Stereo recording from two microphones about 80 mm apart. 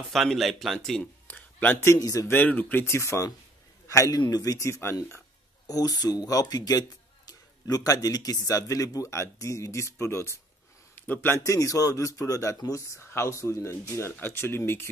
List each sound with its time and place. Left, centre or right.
0.1 s speech: centre
1.2 s a sound: left
2.0 s a man's voice: left
2.3 s a man's voice: left
4.2 s a man's voice: left
4.6 s a man's voice: left
5.7 s a man's voice: left